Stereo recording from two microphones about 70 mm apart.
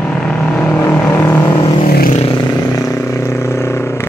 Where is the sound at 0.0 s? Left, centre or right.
Centre.